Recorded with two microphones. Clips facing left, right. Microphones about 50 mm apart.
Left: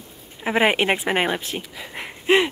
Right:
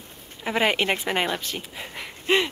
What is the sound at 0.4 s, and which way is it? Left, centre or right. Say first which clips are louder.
A woman's voice: left 4 dB; left.